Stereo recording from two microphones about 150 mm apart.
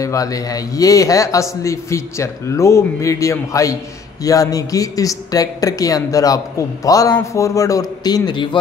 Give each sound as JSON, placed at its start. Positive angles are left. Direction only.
{"t": 0.0, "sound": "speech", "side_deg": 25}